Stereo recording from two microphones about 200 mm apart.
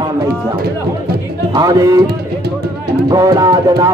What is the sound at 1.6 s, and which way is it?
Speech, 15° right (ahead or behind).